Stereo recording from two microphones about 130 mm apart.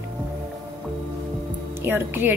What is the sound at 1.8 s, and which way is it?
Speech, 15° right (ahead or behind).